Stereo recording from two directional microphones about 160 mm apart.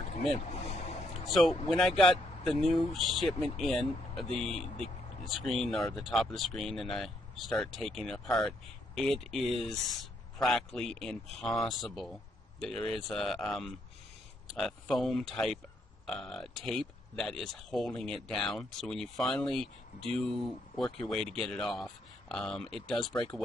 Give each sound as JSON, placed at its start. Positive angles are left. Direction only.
{"t": 0.1, "sound": "speech", "side_deg": 40}
{"t": 1.2, "sound": "speech", "side_deg": 0}